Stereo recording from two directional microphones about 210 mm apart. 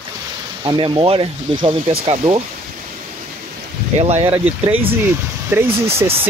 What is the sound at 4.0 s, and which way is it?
Speech, 25° right (ahead or behind).